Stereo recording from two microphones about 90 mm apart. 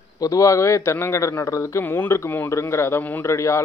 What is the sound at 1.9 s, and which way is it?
Speech, 20° left (ahead or behind).